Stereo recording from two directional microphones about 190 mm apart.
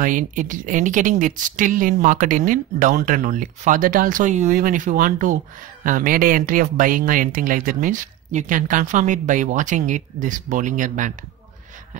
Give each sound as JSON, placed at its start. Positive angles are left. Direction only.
{"t": 0.0, "sound": "speech", "side_deg": -45}